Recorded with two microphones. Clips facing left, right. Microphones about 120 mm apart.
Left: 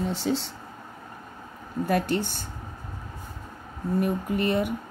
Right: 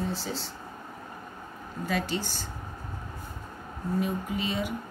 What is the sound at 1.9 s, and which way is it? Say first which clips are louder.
Speech: left 5 dB; 60° left (ahead or behind).